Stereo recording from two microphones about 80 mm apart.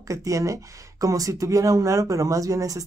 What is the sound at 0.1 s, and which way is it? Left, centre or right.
Speech, right.